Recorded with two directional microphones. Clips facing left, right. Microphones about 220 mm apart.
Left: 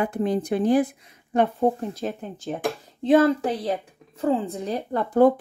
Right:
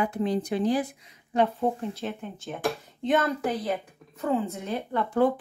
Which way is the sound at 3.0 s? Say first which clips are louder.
Left 8 dB; 30° left (ahead or behind).